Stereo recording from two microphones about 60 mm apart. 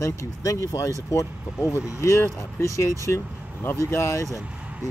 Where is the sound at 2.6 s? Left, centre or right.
Left.